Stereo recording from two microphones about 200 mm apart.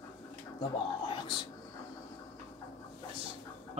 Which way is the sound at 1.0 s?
25° left (ahead or behind).